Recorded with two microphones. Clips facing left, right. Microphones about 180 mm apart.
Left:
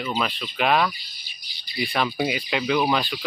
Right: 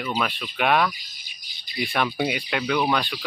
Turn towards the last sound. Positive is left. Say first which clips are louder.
# left 1 dB
turn(degrees=10)  # may be behind; listen again after turning